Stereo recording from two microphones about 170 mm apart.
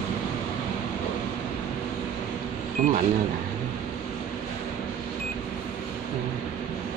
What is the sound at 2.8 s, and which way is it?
Speech, 50° right (ahead or behind).